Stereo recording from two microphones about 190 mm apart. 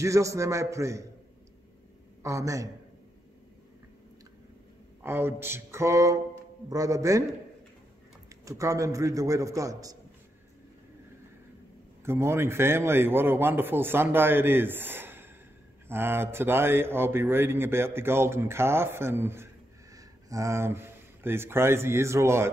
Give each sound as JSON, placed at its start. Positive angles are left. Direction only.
{"t": 0.0, "sound": "a man's voice", "side_deg": -15}
{"t": 2.2, "sound": "a man's voice", "side_deg": -15}
{"t": 5.0, "sound": "a man's voice", "side_deg": -10}
{"t": 8.5, "sound": "a man's voice", "side_deg": -15}
{"t": 12.0, "sound": "a man's voice", "side_deg": -15}